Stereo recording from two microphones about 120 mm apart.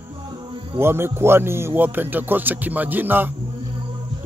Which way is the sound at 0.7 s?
20° right (ahead or behind).